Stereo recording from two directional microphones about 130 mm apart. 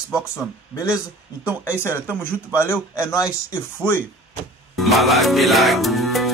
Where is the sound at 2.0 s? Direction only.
15° right (ahead or behind).